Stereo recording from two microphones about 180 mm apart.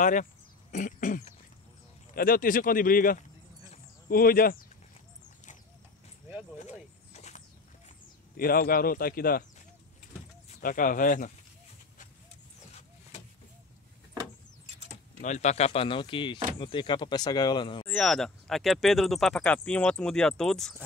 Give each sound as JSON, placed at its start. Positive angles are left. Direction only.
{"t": 0.0, "sound": "speech", "side_deg": 45}
{"t": 6.6, "sound": "mechanisms", "side_deg": 40}
{"t": 8.4, "sound": "speech", "side_deg": 55}
{"t": 10.6, "sound": "speech", "side_deg": 50}
{"t": 15.2, "sound": "speech", "side_deg": 40}
{"t": 17.8, "sound": "speech", "side_deg": 5}